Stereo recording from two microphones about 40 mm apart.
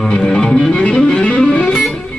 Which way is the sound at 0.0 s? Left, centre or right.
Centre.